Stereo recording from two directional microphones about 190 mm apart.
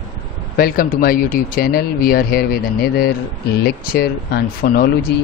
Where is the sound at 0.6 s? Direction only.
50° left (ahead or behind).